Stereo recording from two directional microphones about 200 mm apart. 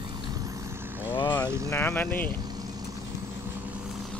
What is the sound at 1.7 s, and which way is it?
Speech, 10° left (ahead or behind).